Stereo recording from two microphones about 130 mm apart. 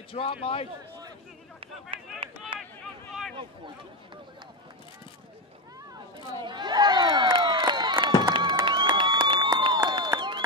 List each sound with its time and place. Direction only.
0.1 s speech: 45° left (ahead or behind)
1.9 s speech: 45° right (ahead or behind)
2.5 s run: 40° right (ahead or behind)
6.1 s crowd: 35° right (ahead or behind)
8.6 s a sound: 35° right (ahead or behind)